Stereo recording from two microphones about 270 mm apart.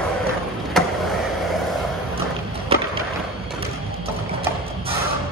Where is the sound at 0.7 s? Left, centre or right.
Centre.